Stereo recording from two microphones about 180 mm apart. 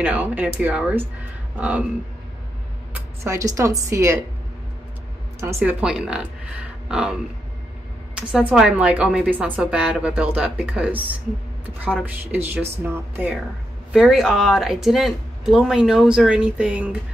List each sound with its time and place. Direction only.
0.0 s a woman's voice: 10° right (ahead or behind)
2.9 s speech: 15° right (ahead or behind)
5.4 s a woman's voice: 15° right (ahead or behind)
12.0 s a woman's voice: 10° right (ahead or behind)